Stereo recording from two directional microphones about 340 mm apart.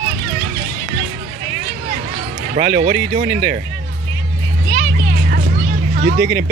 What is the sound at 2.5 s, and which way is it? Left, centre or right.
Speech, right.